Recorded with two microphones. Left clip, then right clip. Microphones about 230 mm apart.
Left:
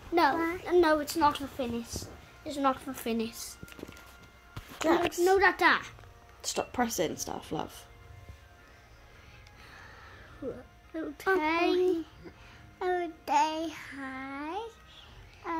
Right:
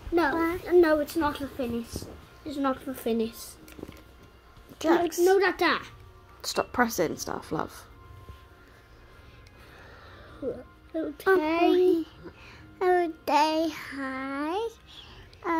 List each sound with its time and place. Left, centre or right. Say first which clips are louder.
0.7 s a woman's voice: right 3 dB; centre
4.7 s a child's voice: right 3 dB; centre
11.0 s speech: right 5 dB; centre
11.7 s a child's voice: right 5 dB; centre